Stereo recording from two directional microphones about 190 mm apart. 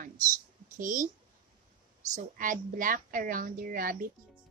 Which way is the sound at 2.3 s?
45° right (ahead or behind).